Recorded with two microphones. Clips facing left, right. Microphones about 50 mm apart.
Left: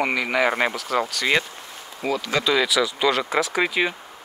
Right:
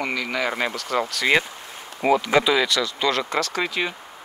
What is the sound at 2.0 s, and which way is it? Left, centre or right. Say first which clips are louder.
Speech: right 6 dB; right.